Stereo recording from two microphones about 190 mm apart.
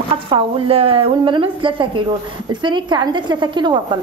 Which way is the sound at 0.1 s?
30° right (ahead or behind).